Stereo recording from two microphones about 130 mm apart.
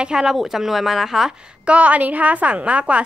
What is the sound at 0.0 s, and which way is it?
A woman's voice, 5° right (ahead or behind).